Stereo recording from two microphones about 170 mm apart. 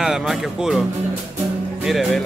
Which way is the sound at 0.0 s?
5° right (ahead or behind).